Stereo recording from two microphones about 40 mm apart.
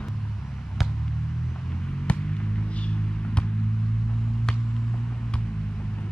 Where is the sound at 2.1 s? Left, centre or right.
Left.